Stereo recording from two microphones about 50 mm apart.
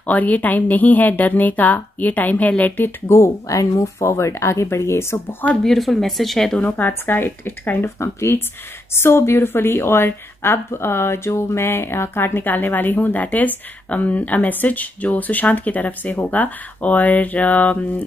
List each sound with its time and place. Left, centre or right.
0.0 s a woman's voice: left
3.1 s speech: left
5.6 s speech: centre
7.1 s speech: left
8.0 s speech: left
8.9 s a woman's voice: left